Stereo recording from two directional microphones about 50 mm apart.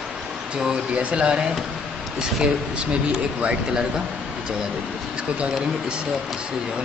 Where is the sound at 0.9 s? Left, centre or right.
Right.